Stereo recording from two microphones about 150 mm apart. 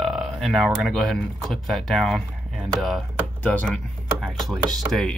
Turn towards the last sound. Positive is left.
turn(degrees=0)  # may be behind; listen again after turning